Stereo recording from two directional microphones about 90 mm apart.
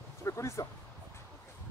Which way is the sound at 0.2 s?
35° left (ahead or behind).